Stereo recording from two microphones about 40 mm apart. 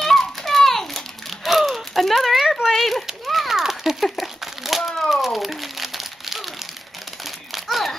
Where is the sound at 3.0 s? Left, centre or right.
Centre.